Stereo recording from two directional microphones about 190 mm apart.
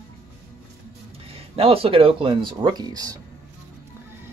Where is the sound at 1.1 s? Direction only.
30° right (ahead or behind).